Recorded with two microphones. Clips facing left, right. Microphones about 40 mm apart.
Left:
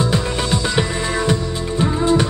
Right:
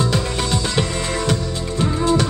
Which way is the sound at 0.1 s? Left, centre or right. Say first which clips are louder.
Left 1 dB; centre.